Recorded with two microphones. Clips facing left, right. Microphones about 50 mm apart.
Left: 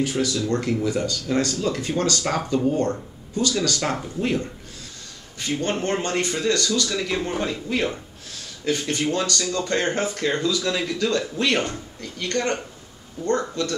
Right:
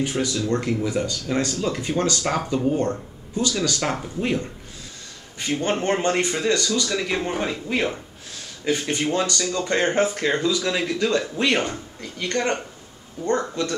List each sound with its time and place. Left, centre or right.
0.0 s speech: centre